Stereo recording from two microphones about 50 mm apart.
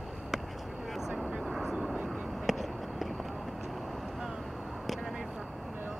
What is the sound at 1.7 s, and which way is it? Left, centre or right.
Aircraft, centre.